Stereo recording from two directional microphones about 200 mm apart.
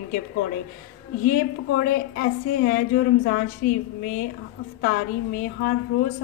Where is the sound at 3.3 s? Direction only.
45° left (ahead or behind).